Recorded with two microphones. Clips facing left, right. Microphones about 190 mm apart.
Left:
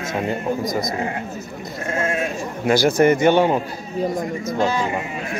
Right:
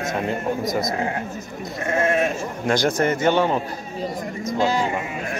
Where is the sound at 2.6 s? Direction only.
5° left (ahead or behind).